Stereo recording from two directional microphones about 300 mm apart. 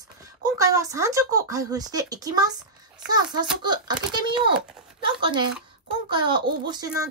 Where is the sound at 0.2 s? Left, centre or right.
Centre.